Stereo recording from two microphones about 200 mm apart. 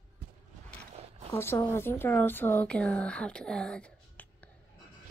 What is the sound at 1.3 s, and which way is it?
A woman's voice, 10° left (ahead or behind).